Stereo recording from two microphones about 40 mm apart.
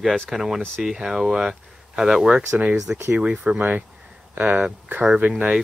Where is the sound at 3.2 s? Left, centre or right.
Right.